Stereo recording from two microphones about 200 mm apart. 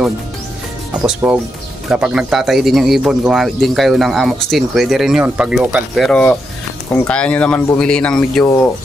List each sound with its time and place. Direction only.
0.9 s speech: 5° right (ahead or behind)